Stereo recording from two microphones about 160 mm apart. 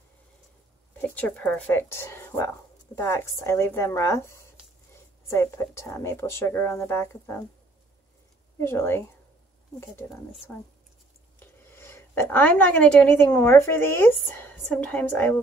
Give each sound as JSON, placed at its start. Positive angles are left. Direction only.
{"t": 1.0, "sound": "speech", "side_deg": 10}
{"t": 8.5, "sound": "speech", "side_deg": 15}
{"t": 11.3, "sound": "a woman's voice", "side_deg": 15}